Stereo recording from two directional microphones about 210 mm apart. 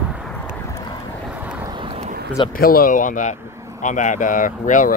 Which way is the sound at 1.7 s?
25° right (ahead or behind).